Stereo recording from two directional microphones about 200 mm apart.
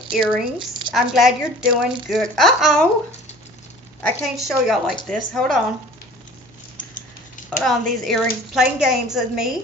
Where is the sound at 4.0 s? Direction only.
5° left (ahead or behind).